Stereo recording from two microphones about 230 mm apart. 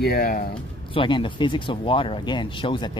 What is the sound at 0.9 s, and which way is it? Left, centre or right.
Speech, left.